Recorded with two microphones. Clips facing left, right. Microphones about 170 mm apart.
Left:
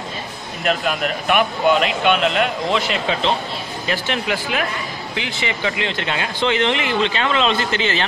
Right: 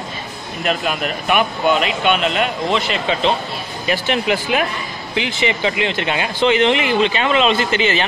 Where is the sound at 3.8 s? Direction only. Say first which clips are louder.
Right 5 dB; 15° right (ahead or behind).